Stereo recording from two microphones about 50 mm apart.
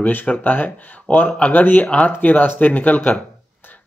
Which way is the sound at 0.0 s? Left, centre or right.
Left.